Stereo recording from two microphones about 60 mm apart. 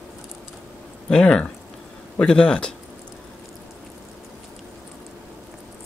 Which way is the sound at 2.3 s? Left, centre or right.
Centre.